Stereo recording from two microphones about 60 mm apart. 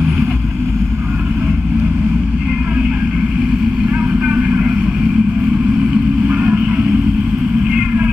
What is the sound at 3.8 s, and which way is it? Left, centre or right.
Vehicle, centre.